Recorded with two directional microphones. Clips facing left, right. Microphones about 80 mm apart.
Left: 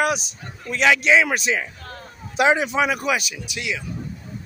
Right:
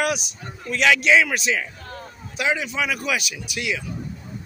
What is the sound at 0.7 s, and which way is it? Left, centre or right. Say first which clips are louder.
Speech: even; centre.